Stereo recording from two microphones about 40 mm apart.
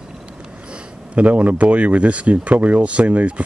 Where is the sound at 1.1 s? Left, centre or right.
Right.